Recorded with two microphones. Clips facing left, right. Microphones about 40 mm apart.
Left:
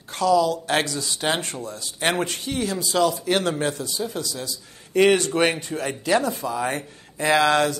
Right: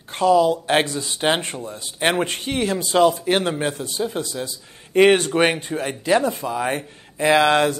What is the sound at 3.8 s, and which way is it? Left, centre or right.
Speech, right.